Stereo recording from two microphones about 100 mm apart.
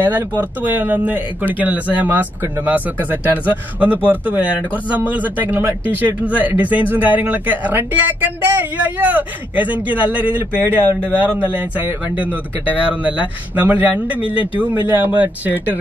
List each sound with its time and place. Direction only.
0.0 s speech: 20° right (ahead or behind)